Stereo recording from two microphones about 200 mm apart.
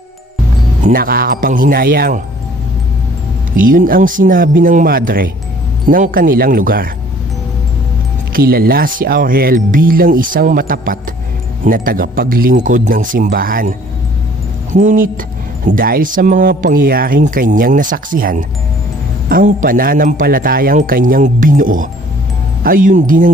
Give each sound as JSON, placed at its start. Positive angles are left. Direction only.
{"t": 0.8, "sound": "speech", "side_deg": -50}
{"t": 3.5, "sound": "speech", "side_deg": -45}
{"t": 8.3, "sound": "speech", "side_deg": -45}